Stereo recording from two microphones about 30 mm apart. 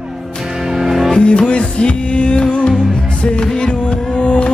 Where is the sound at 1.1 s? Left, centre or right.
Left.